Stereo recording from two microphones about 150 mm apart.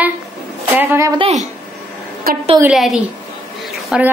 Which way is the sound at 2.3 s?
80° right.